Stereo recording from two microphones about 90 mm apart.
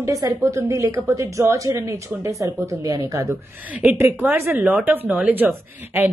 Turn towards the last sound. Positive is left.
turn(degrees=-25)  # may be behind; listen again after turning